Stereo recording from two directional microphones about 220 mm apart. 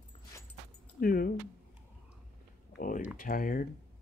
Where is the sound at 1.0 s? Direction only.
40° left (ahead or behind).